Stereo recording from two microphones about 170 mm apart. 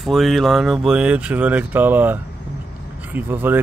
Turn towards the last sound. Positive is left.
turn(degrees=-10)  # may be behind; listen again after turning